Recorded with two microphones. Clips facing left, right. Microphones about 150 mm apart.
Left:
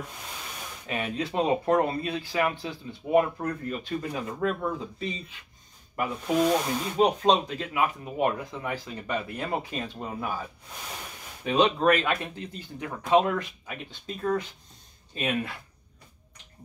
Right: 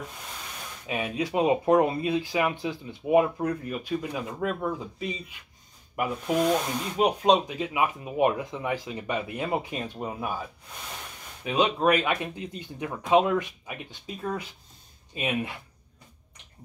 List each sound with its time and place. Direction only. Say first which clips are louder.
0.8 s speech: right 1 dB; 10° right (ahead or behind)
7.2 s speech: right 1 dB; 10° right (ahead or behind)
11.4 s speech: left 1 dB; 10° right (ahead or behind)